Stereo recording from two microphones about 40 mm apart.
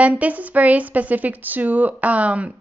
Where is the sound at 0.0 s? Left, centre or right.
Right.